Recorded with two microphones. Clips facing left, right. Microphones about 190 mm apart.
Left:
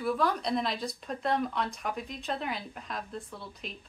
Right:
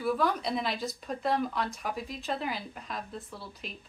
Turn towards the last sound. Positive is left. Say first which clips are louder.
# even
turn(degrees=0)  # may be behind; listen again after turning